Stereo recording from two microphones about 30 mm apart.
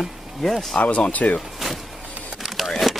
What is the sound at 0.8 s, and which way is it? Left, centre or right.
Speech, left.